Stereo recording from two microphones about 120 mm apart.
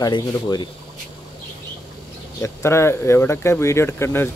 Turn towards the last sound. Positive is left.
turn(degrees=20)  # may be behind; listen again after turning